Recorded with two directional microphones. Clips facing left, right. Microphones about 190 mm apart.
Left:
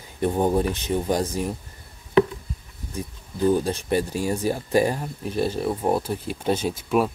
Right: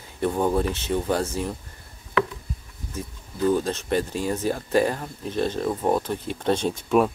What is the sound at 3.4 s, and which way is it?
Speech, 15° left (ahead or behind).